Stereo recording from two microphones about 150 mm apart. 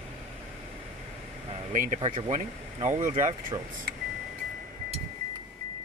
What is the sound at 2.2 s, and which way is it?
Speech, 50° right (ahead or behind).